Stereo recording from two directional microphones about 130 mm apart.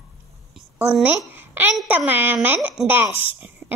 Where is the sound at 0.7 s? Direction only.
10° right (ahead or behind).